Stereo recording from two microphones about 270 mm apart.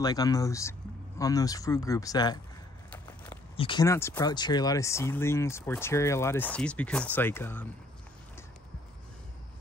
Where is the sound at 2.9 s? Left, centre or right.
Centre.